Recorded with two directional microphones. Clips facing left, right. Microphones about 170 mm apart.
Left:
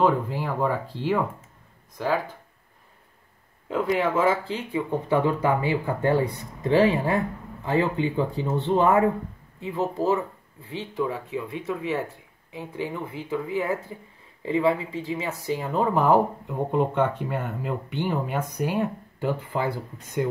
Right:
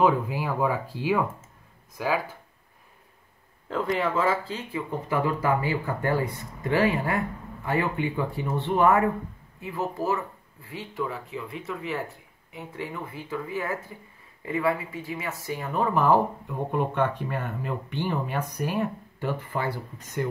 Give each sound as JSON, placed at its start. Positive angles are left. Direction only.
{"t": 0.0, "sound": "speech", "side_deg": -10}
{"t": 3.6, "sound": "speech", "side_deg": 5}
{"t": 11.3, "sound": "speech", "side_deg": 20}